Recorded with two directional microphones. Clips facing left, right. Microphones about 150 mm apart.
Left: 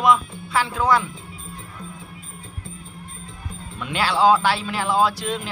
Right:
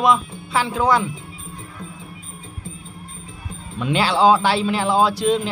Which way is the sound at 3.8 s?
25° right (ahead or behind).